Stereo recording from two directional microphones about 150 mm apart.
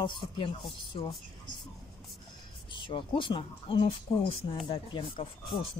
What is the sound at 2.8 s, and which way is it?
A woman's voice, 35° left (ahead or behind).